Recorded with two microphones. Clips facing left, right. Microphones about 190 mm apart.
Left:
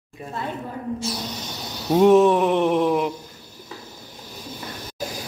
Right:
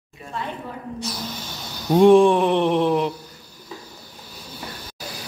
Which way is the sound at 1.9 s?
5° left (ahead or behind).